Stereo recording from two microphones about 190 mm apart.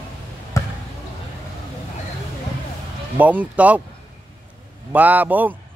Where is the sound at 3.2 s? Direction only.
10° right (ahead or behind).